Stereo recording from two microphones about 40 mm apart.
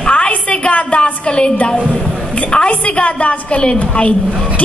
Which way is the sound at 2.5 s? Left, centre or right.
Left.